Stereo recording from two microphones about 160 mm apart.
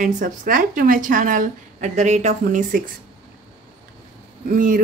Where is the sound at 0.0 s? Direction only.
55° right (ahead or behind).